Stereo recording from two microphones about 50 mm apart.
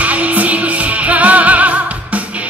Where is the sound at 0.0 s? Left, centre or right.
Right.